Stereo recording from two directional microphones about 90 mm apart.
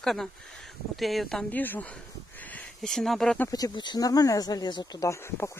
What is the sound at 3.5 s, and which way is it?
Speech, 50° left (ahead or behind).